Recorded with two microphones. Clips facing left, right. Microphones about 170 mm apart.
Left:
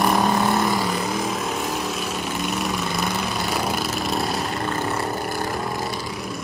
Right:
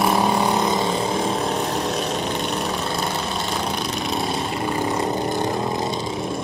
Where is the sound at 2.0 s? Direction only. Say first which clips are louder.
Right 2 dB; 5° left (ahead or behind).